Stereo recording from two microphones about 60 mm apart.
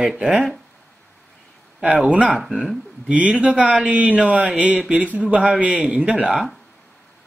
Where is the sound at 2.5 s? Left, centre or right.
Centre.